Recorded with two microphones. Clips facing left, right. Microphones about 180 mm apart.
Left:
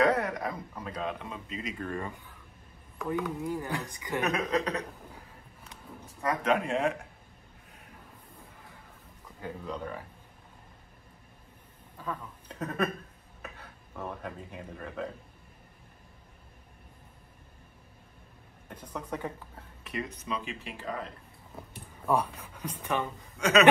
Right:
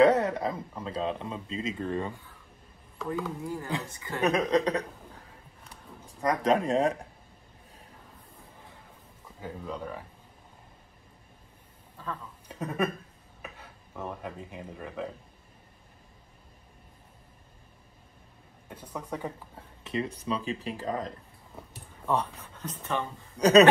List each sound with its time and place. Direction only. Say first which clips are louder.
0.0 s speech: right 5 dB; 25° right (ahead or behind)
3.0 s a woman's voice: left 1 dB; 20° left (ahead or behind)
4.5 s speech: right 4 dB; 35° right (ahead or behind)
6.2 s speech: right 3 dB; 35° right (ahead or behind)
9.4 s speech: even; 5° right (ahead or behind)
12.0 s a woman's voice: left 1 dB; 10° left (ahead or behind)
12.4 s speech: right 1 dB; 10° right (ahead or behind)
18.7 s a woman's voice: even; 10° right (ahead or behind)
19.8 s speech: right 5 dB; 30° right (ahead or behind)
21.5 s speech: left 1 dB; centre (ahead or behind)
23.3 s a man's voice: right 6 dB; 35° right (ahead or behind)